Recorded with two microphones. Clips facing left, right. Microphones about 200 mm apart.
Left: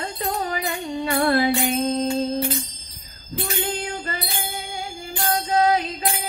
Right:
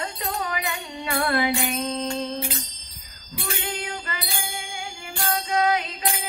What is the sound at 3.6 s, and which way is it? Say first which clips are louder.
Music: left 5 dB; 35° left (ahead or behind).